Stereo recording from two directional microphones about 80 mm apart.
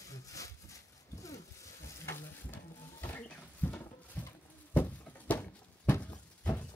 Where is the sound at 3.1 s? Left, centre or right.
Left.